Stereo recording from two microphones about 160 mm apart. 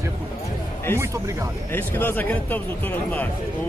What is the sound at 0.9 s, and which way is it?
Speech, 20° right (ahead or behind).